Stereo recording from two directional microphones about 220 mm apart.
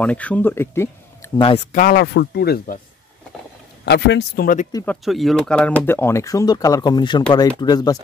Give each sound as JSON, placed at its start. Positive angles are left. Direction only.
{"t": 0.0, "sound": "speech", "side_deg": 5}
{"t": 1.4, "sound": "speech", "side_deg": 25}
{"t": 1.8, "sound": "speech", "side_deg": 45}
{"t": 3.8, "sound": "speech", "side_deg": 50}
{"t": 4.8, "sound": "speech", "side_deg": 0}